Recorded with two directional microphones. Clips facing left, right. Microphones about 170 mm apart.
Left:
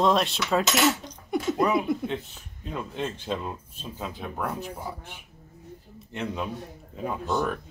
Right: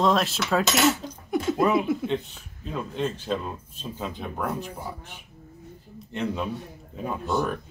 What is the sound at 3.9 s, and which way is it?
Speech, 5° left (ahead or behind).